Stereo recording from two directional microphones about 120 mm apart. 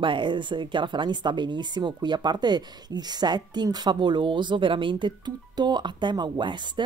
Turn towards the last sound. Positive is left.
turn(degrees=-40)  # may be behind; listen again after turning